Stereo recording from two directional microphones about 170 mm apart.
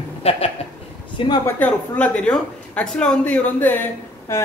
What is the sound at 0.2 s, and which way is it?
Speech, 35° left (ahead or behind).